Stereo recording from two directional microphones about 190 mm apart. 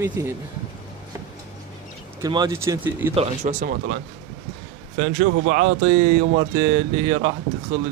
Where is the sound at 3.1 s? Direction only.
40° right (ahead or behind).